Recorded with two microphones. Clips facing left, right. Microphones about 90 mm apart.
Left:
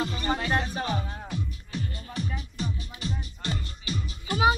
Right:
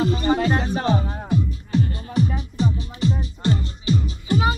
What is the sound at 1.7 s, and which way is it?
Music, 35° right (ahead or behind).